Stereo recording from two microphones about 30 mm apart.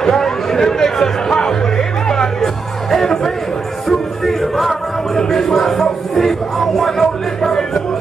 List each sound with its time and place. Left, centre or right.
0.0 s music: centre
5.1 s music: left
5.4 s music: centre